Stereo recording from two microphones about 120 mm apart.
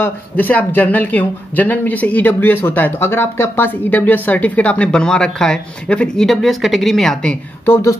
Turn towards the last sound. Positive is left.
turn(degrees=20)  # may be behind; listen again after turning